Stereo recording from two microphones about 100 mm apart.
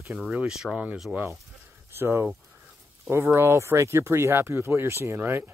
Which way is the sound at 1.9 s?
25° right (ahead or behind).